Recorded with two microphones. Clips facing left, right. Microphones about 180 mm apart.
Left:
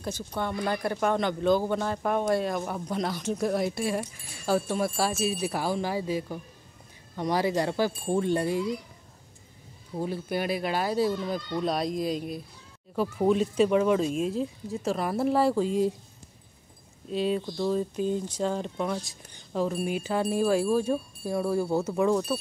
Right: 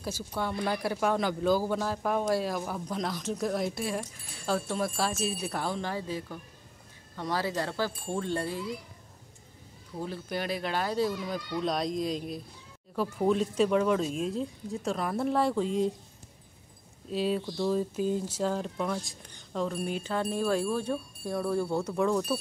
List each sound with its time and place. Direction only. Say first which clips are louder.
0.0 s speech: left 2 dB; 5° right (ahead or behind); by 8.6 s 15° left (ahead or behind)
10.0 s speech: left 4 dB; 10° left (ahead or behind)
17.1 s speech: left 2 dB; centre (ahead or behind)